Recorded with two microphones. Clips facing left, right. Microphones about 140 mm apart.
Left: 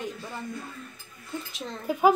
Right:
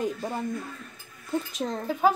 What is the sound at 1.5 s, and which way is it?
Speech, 40° right (ahead or behind).